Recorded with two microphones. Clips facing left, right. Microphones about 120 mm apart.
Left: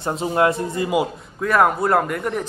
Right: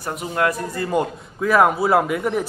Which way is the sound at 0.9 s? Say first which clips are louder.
Left 1 dB; 5° left (ahead or behind).